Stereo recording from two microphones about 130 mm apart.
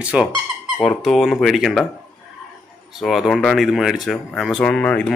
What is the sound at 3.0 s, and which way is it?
Speech, centre (ahead or behind).